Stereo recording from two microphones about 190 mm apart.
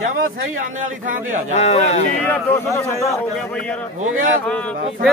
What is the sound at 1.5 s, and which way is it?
Speech, 35° left (ahead or behind).